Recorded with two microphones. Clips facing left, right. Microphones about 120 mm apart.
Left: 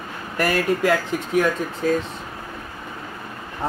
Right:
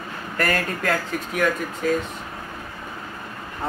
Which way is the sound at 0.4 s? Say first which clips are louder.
Left 4 dB; 15° left (ahead or behind).